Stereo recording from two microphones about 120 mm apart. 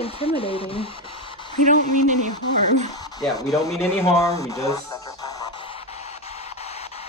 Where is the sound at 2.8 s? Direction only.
30° left (ahead or behind).